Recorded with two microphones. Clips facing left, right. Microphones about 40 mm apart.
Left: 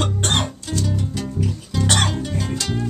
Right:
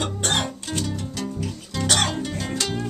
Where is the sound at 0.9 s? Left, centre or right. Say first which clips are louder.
Left 3 dB; centre.